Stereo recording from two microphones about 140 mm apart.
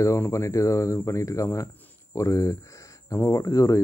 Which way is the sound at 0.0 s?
20° left (ahead or behind).